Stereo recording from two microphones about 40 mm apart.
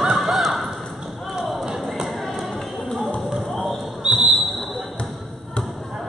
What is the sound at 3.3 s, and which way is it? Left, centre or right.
Basketball bounce, centre.